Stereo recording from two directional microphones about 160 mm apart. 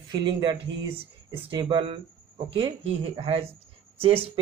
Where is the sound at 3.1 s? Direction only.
40° right (ahead or behind).